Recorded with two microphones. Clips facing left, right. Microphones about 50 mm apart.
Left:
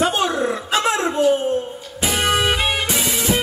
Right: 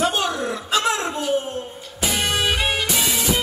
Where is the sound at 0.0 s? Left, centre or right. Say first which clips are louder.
Left 3 dB; left.